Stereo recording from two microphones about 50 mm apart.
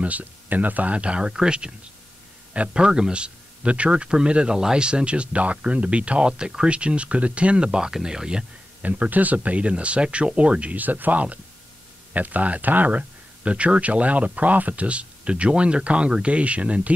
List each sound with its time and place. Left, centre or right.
0.0 s a man's voice: right; by 8.5 s centre
8.8 s a man's voice: right